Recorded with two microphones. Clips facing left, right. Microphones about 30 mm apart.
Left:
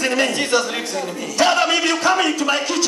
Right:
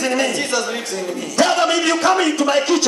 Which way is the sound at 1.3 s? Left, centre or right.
Centre.